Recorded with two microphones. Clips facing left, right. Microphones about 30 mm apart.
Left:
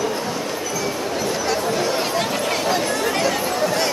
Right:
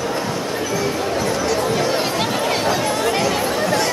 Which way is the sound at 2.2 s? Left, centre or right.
Centre.